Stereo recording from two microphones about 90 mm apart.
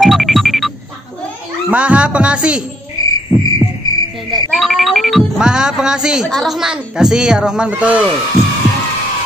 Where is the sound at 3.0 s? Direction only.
45° left (ahead or behind).